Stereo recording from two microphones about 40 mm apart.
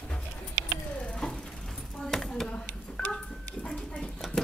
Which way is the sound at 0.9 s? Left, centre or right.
Left.